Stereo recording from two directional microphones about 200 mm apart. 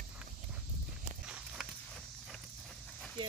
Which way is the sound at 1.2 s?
5° right (ahead or behind).